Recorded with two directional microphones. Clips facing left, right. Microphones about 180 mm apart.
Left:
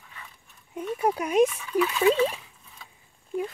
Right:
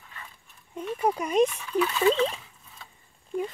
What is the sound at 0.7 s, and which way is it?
Speech, 5° left (ahead or behind).